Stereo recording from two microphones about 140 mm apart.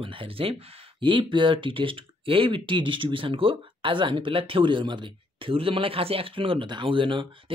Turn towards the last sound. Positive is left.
turn(degrees=-35)  # may be behind; listen again after turning